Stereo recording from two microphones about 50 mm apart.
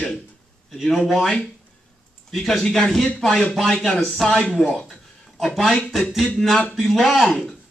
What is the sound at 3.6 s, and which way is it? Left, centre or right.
Speech, centre.